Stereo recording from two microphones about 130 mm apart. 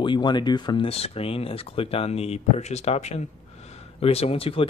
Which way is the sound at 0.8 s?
50° left (ahead or behind).